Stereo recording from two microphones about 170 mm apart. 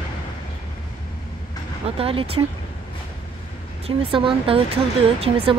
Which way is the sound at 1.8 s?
35° right (ahead or behind).